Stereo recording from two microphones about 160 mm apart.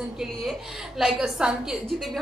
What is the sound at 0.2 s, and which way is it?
Speech, centre (ahead or behind).